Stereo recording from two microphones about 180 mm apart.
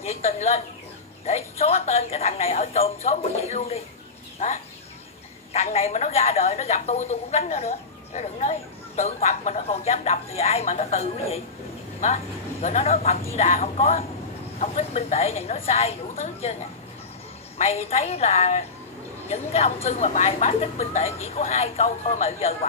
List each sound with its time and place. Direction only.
0.0 s a man's voice: 35° left (ahead or behind)
12.6 s a man's voice: 35° left (ahead or behind)
17.6 s a man's voice: 35° left (ahead or behind)